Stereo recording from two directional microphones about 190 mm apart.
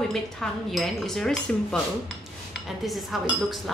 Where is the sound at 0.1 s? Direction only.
Centre (ahead or behind).